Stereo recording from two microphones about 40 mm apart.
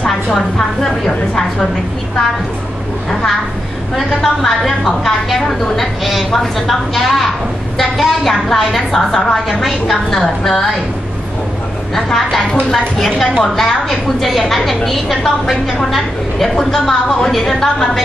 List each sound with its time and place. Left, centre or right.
0.6 s a woman's voice: centre
4.1 s a woman's voice: centre
11.9 s a woman's voice: centre